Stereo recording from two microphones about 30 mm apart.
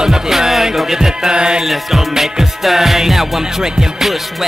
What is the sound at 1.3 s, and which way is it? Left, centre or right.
Music, right.